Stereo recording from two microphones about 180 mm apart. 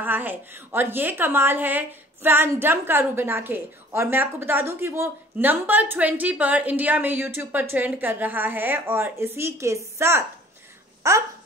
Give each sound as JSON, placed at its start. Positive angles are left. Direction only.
{"t": 0.0, "sound": "a woman's voice", "side_deg": -10}